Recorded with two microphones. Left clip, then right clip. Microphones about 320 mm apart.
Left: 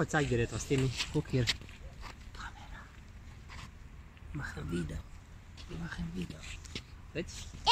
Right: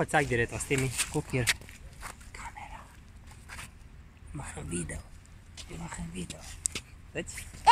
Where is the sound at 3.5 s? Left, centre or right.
Right.